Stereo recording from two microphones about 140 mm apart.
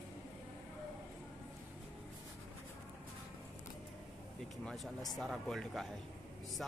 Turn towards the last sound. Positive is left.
turn(degrees=0)  # may be behind; listen again after turning